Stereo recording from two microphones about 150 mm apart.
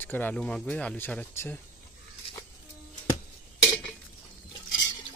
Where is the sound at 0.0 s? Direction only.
10° left (ahead or behind).